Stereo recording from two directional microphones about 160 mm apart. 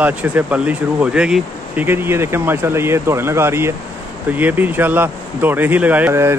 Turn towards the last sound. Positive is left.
turn(degrees=-15)  # may be behind; listen again after turning